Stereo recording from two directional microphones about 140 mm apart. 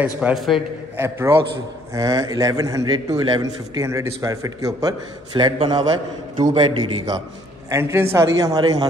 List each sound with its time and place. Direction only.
0.0 s a man's voice: 5° right (ahead or behind)
0.9 s a man's voice: 20° right (ahead or behind)
5.3 s a man's voice: 35° right (ahead or behind)
7.7 s a man's voice: 20° right (ahead or behind)